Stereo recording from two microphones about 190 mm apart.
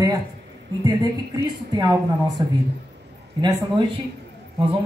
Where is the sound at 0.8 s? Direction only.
20° right (ahead or behind).